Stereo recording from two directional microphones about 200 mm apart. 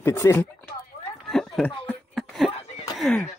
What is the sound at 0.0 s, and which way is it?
Speech, 15° left (ahead or behind).